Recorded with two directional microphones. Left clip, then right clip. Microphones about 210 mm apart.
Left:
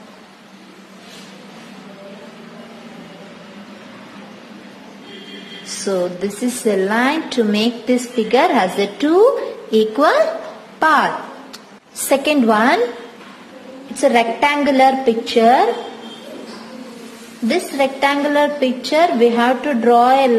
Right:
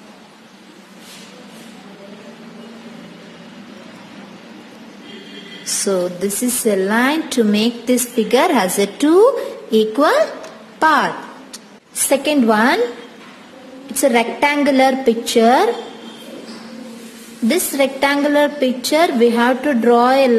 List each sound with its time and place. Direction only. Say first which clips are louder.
5.9 s a woman's voice: even; 25° right (ahead or behind)
14.0 s a woman's voice: left 1 dB; 25° right (ahead or behind)
17.5 s a woman's voice: right 1 dB; 25° right (ahead or behind)